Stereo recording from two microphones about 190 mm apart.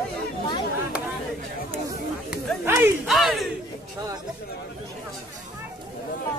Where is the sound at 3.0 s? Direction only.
Centre (ahead or behind).